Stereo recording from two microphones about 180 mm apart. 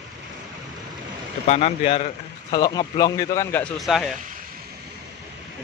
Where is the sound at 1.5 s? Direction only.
40° left (ahead or behind).